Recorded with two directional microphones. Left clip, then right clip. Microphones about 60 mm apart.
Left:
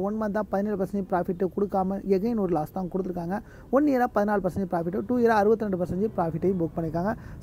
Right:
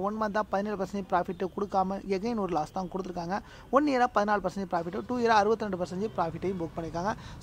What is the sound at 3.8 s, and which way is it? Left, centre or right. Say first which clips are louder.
Speech: left 2 dB; left.